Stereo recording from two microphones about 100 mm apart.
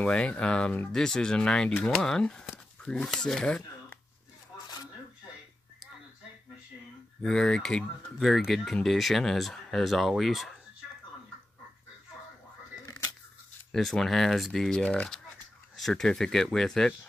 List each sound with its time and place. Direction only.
0.0 s speech: 15° left (ahead or behind)
7.2 s speech: 5° left (ahead or behind)
12.8 s a sound: 30° left (ahead or behind)
13.7 s speech: 5° left (ahead or behind)